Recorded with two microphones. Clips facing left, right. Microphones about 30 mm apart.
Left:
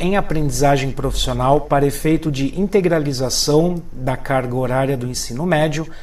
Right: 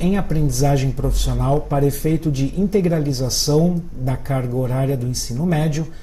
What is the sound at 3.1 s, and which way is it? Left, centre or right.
Speech, left.